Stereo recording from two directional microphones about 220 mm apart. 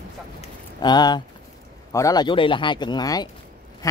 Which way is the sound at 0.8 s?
20° left (ahead or behind).